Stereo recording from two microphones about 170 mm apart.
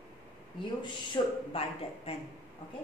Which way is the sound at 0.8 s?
30° left (ahead or behind).